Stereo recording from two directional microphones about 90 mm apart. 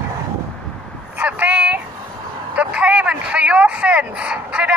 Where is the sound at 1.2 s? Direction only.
20° right (ahead or behind).